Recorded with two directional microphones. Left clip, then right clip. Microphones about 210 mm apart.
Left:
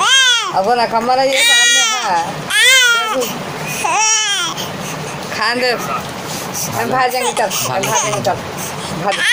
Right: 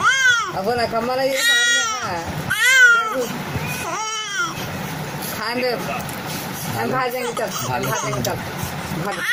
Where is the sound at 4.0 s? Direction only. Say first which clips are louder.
Left 11 dB; 15° right (ahead or behind).